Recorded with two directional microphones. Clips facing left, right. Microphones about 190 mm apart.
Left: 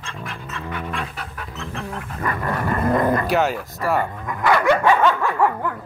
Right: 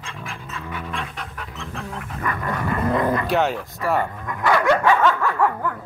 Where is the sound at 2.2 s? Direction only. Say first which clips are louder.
Left 2 dB; 35° left (ahead or behind).